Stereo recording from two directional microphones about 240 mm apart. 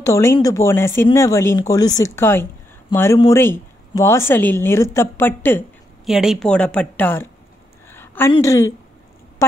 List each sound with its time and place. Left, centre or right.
0.0 s a woman's voice: centre
6.0 s speech: centre
7.9 s a sound: centre
8.3 s a woman's voice: centre